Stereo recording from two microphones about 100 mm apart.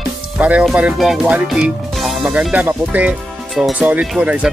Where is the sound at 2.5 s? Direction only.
15° right (ahead or behind).